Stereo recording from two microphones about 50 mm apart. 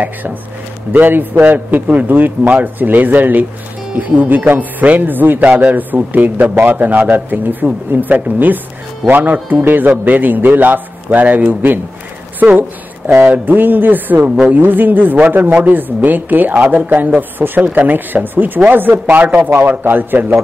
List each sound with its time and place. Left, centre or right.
0.0 s a man's voice: right
12.4 s a sound: right
13.2 s a man's voice: right